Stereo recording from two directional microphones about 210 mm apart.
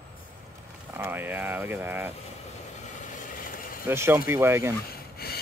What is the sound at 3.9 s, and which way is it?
Speech, 10° right (ahead or behind).